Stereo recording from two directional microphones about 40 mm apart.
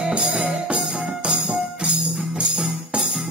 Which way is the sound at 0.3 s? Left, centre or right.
Right.